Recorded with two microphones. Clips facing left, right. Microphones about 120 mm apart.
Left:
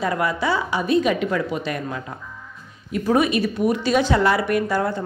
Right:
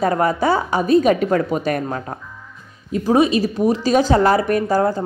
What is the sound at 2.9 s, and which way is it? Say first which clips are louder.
A woman's voice: right 4 dB; 30° right (ahead or behind).